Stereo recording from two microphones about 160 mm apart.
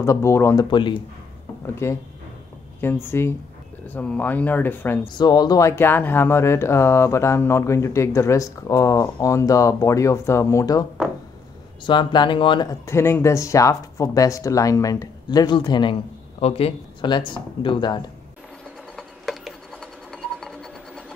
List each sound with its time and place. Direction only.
0.0 s speech: 15° left (ahead or behind)
0.7 s speech: 30° left (ahead or behind)
1.8 s speech: 15° left (ahead or behind)
5.0 s speech: 25° left (ahead or behind)
12.8 s speech: 15° left (ahead or behind)
18.9 s a sound: centre (ahead or behind)